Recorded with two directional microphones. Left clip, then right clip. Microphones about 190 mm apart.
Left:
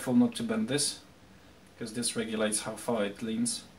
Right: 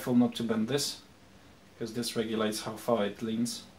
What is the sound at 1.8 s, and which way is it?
Speech, 35° right (ahead or behind).